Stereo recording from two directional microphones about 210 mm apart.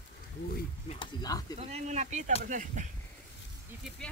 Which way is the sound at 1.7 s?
35° right (ahead or behind).